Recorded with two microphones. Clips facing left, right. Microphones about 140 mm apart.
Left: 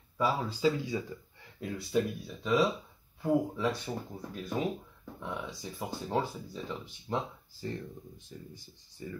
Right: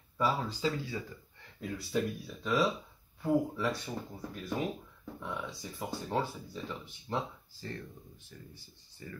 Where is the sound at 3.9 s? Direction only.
20° left (ahead or behind).